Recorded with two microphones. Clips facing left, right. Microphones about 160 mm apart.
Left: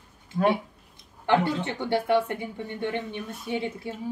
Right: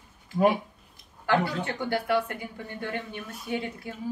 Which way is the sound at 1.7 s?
25° left (ahead or behind).